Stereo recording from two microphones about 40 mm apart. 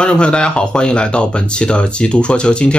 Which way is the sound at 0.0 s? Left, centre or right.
Left.